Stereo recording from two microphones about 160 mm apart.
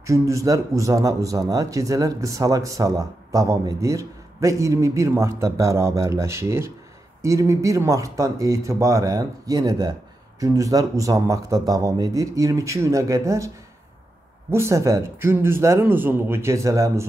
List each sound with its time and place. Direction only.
0.0 s a man's voice: 20° right (ahead or behind)
14.5 s a man's voice: 20° right (ahead or behind)